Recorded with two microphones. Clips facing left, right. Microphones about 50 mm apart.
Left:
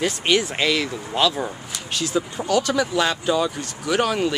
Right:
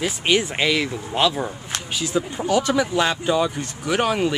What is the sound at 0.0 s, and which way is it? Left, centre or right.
Speech, centre.